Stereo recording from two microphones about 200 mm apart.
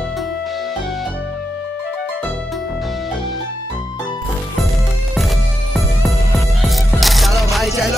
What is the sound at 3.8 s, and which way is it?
Music, 20° left (ahead or behind).